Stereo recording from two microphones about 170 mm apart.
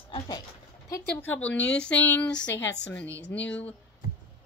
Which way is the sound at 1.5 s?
90° left.